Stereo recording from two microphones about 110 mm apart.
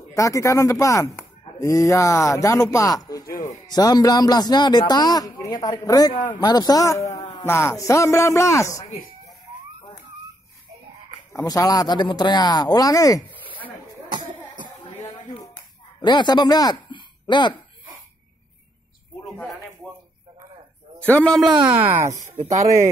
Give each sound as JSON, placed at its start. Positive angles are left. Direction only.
{"t": 0.1, "sound": "a man's voice", "side_deg": 30}
{"t": 7.2, "sound": "a sound", "side_deg": 45}
{"t": 7.4, "sound": "a man's voice", "side_deg": 25}
{"t": 11.4, "sound": "speech", "side_deg": 35}
{"t": 14.1, "sound": "cough", "side_deg": -45}
{"t": 16.0, "sound": "speech", "side_deg": 45}
{"t": 21.0, "sound": "a man's voice", "side_deg": 10}
{"t": 21.6, "sound": "speech", "side_deg": -15}